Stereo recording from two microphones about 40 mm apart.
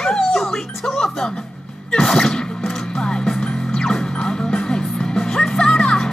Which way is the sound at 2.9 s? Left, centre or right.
Centre.